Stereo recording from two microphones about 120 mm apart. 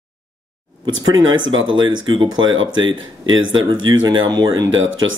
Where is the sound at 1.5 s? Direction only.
45° right (ahead or behind).